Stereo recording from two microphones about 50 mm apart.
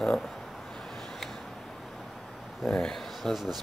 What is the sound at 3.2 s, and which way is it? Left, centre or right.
Speech, centre.